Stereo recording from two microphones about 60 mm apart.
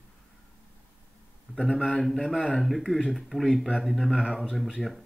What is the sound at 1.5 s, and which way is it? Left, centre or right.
Speech, centre.